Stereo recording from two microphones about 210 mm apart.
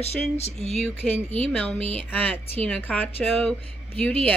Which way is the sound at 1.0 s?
10° left (ahead or behind).